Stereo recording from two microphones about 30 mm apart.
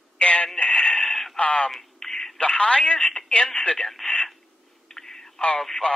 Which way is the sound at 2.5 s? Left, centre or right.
Left.